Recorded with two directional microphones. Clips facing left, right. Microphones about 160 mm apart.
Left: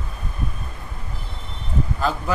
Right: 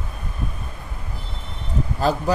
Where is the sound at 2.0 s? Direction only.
40° right (ahead or behind).